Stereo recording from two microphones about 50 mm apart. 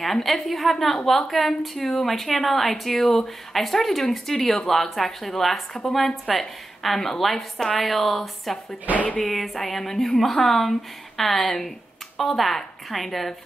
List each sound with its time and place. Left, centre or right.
0.0 s a woman's voice: centre
8.9 s speech: right
9.2 s a woman's voice: centre